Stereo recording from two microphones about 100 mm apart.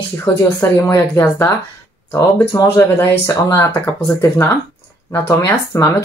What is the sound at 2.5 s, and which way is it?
Speech, 35° left (ahead or behind).